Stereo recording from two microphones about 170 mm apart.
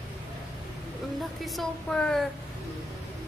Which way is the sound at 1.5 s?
Centre (ahead or behind).